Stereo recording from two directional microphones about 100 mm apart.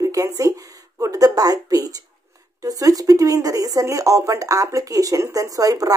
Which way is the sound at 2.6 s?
35° right (ahead or behind).